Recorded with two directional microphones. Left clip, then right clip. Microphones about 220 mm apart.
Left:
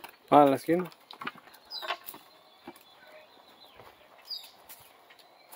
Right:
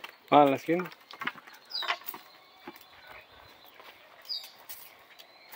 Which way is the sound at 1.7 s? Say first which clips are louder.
Right 3 dB; 15° left (ahead or behind).